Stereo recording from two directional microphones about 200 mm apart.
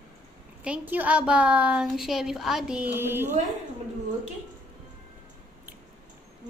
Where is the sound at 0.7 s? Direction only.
10° right (ahead or behind).